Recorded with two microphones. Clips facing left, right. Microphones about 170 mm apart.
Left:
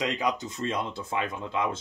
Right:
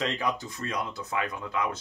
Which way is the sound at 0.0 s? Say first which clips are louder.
Left 1 dB; 15° left (ahead or behind).